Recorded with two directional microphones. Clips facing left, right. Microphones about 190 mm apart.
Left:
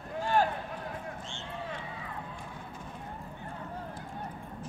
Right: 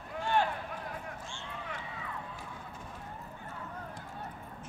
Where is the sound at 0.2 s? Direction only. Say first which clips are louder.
Left 2 dB; 40° left (ahead or behind).